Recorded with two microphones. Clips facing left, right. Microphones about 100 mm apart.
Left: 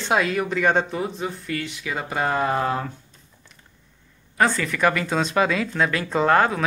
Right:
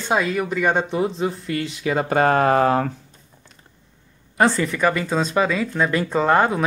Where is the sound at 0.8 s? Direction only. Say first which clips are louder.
Right 5 dB; 25° right (ahead or behind).